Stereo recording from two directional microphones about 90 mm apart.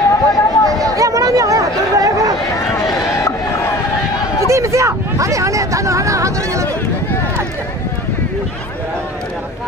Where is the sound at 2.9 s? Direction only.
35° left (ahead or behind).